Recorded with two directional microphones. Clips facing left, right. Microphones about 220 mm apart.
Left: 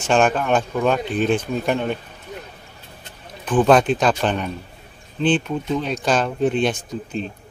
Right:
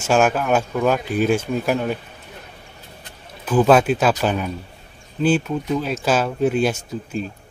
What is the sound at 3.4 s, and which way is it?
Speech, 5° right (ahead or behind).